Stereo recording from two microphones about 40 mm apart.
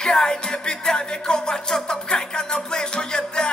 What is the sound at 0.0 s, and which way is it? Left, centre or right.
Music, centre.